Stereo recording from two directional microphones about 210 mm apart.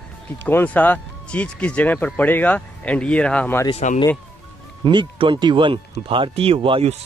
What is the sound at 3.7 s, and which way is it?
Speech, 30° left (ahead or behind).